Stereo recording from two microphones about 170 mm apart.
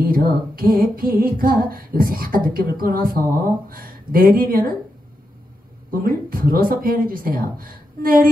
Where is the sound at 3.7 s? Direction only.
55° right (ahead or behind).